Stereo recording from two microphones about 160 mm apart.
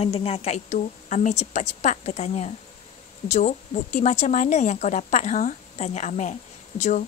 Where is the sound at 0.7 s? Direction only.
50° left (ahead or behind).